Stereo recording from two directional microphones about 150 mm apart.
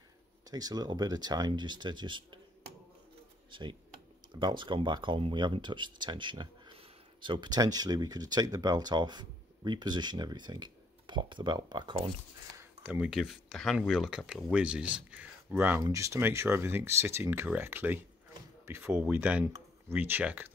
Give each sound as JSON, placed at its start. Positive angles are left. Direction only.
{"t": 0.5, "sound": "speech", "side_deg": -25}
{"t": 4.3, "sound": "speech", "side_deg": -30}
{"t": 12.5, "sound": "a sound", "side_deg": -15}
{"t": 13.1, "sound": "speech", "side_deg": 0}